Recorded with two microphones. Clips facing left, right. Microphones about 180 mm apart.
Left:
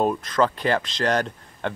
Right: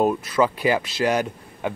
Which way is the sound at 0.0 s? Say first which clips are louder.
Right 2 dB; 5° right (ahead or behind).